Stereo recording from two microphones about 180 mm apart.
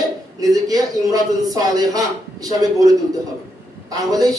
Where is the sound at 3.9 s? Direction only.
20° right (ahead or behind).